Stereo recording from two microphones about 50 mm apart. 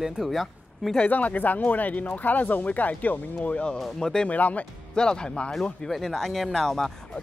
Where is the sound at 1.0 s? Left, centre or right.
Left.